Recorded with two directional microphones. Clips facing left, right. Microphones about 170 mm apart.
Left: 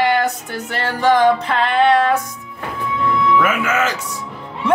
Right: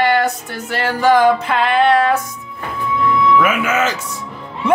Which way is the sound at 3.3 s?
15° right (ahead or behind).